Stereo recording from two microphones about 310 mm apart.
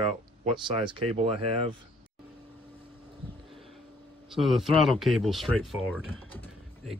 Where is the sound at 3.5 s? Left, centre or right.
Centre.